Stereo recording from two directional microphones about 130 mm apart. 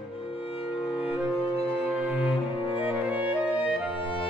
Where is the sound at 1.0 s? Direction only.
10° right (ahead or behind).